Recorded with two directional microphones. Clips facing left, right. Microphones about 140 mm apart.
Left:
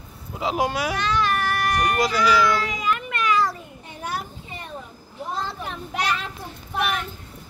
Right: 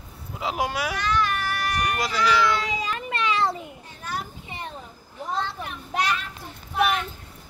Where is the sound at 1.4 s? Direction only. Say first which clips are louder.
Left 4 dB; 60° left (ahead or behind).